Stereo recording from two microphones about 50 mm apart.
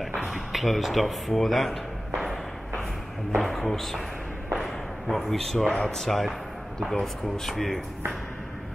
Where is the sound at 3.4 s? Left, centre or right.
Centre.